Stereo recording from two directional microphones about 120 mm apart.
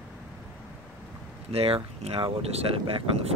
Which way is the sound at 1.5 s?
55° right (ahead or behind).